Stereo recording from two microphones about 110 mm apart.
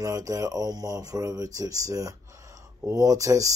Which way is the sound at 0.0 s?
30° right (ahead or behind).